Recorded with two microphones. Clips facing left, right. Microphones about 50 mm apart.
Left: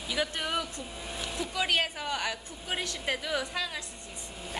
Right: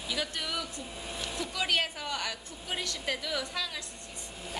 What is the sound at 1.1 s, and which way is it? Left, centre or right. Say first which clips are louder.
Speech: left 1 dB; centre.